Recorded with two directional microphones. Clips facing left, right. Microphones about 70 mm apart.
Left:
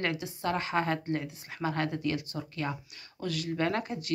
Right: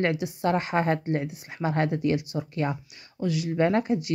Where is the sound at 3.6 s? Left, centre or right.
Right.